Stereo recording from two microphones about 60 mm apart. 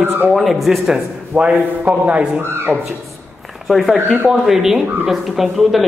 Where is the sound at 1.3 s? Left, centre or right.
Right.